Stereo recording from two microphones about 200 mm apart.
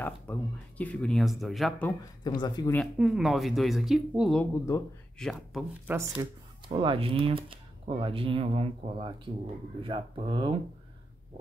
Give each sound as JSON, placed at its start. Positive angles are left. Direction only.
{"t": 0.0, "sound": "speech", "side_deg": 10}
{"t": 1.9, "sound": "speech", "side_deg": 20}
{"t": 3.0, "sound": "speech", "side_deg": 0}
{"t": 4.4, "sound": "speech", "side_deg": 15}
{"t": 5.2, "sound": "speech", "side_deg": 0}
{"t": 6.2, "sound": "speech", "side_deg": -20}